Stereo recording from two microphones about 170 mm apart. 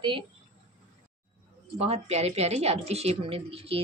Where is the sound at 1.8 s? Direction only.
40° right (ahead or behind).